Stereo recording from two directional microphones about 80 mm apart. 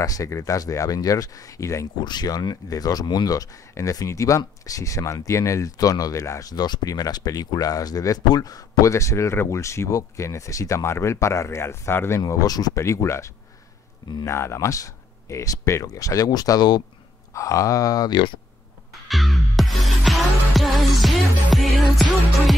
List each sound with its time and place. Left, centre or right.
0.0 s speech: left
2.0 s speech: left
6.2 s speech: left
6.5 s speech: left
12.3 s speech: left
12.7 s speech: left
17.3 s speech: left
18.9 s music: centre